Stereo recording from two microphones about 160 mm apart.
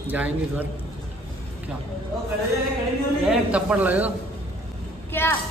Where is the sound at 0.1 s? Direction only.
10° right (ahead or behind).